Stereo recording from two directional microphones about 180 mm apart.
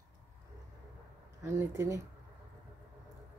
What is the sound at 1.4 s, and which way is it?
Speech, 15° right (ahead or behind).